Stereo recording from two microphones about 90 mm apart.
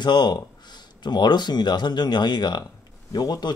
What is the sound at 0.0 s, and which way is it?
Speech, 55° left (ahead or behind).